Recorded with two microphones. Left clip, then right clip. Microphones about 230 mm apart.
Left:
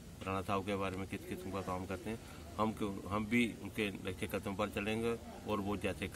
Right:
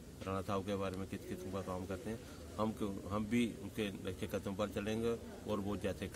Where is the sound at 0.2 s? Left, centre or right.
Centre.